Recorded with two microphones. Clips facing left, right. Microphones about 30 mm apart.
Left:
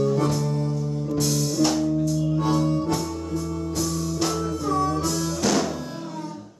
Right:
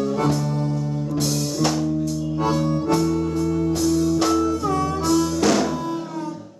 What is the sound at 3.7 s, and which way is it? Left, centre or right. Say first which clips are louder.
Music: right 5 dB; centre.